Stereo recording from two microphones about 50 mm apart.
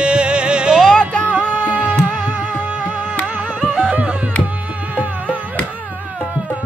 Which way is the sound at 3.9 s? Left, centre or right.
Right.